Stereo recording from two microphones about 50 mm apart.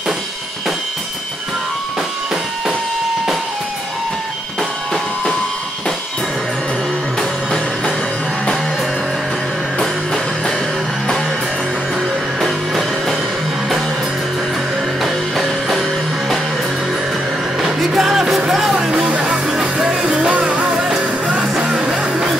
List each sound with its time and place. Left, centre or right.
7.2 s music: centre
9.8 s music: centre
12.4 s music: centre
15.3 s music: centre
17.6 s music: centre
18.9 s music: right
20.3 s music: right